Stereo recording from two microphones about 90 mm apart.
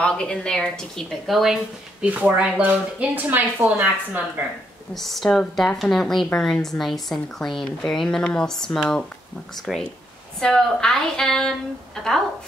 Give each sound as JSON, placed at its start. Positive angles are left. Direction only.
{"t": 0.0, "sound": "a woman's voice", "side_deg": 10}
{"t": 4.9, "sound": "a woman's voice", "side_deg": 0}
{"t": 10.4, "sound": "a woman's voice", "side_deg": 5}